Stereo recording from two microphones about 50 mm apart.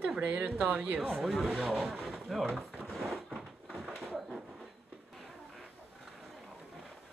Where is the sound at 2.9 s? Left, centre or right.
Centre.